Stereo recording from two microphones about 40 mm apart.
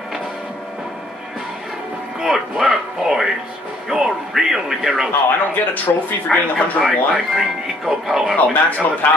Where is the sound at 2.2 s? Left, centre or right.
Centre.